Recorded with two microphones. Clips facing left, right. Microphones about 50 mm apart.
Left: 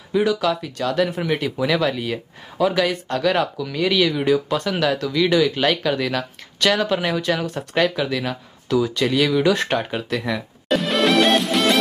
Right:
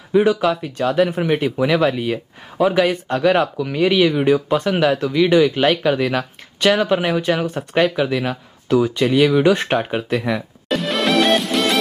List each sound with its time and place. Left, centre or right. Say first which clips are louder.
0.1 s speech: right 4 dB; right
10.7 s music: even; centre